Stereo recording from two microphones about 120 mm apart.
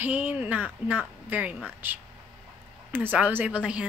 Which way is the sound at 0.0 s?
10° right (ahead or behind).